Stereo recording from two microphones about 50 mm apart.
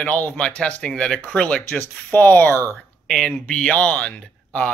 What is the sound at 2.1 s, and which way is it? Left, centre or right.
Speech, left.